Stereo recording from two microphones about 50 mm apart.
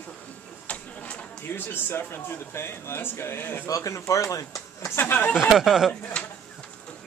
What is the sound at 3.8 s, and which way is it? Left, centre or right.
Speech, left.